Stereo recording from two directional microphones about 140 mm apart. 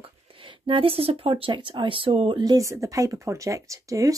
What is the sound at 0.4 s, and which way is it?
Speech, 40° right (ahead or behind).